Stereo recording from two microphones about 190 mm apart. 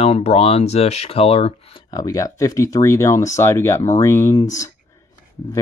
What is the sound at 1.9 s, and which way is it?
Speech, 20° left (ahead or behind).